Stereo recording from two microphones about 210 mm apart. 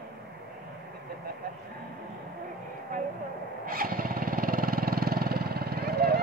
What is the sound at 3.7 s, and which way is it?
Vehicle, 45° right (ahead or behind).